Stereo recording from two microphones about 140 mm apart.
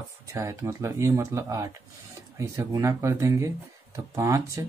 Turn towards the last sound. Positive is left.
turn(degrees=-25)  # may be behind; listen again after turning